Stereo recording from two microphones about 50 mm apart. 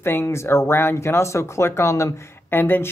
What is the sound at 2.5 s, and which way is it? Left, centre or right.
Speech, left.